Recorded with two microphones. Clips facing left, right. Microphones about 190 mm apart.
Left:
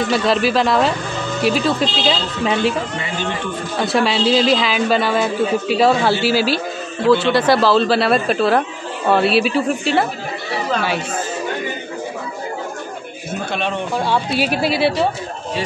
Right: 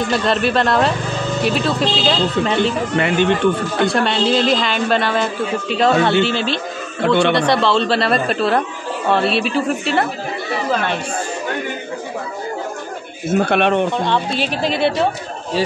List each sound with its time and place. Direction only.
0.0 s a woman's voice: centre (ahead or behind)
3.8 s a woman's voice: 5° left (ahead or behind)
7.0 s speech: 60° right (ahead or behind)
7.3 s a woman's voice: 5° left (ahead or behind)
13.5 s speech: 60° right (ahead or behind)
13.9 s a woman's voice: 5° left (ahead or behind)